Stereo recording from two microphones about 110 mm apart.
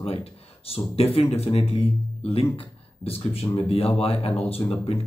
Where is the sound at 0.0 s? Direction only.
60° left (ahead or behind).